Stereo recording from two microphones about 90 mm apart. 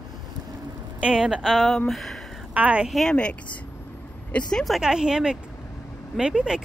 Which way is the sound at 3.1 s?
15° left (ahead or behind).